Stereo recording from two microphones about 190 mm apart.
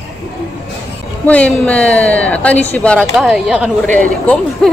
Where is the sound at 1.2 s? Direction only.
10° left (ahead or behind).